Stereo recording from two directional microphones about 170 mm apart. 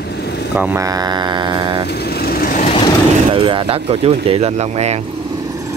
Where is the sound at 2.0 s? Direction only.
65° left (ahead or behind).